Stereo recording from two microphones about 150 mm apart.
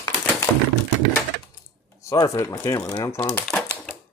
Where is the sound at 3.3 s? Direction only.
10° left (ahead or behind).